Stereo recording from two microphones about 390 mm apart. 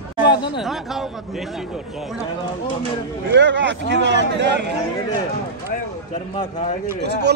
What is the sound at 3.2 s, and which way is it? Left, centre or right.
Speech, right.